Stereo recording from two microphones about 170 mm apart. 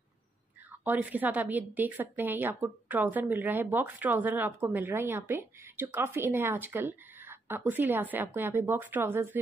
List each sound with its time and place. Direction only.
0.8 s a woman's voice: 10° right (ahead or behind)